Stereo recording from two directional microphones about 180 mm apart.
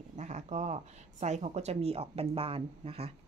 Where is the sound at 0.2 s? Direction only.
40° right (ahead or behind).